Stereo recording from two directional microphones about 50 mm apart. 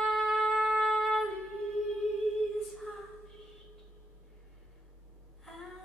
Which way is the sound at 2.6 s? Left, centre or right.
Centre.